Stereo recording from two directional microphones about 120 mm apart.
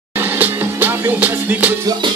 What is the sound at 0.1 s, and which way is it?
Music, 15° right (ahead or behind).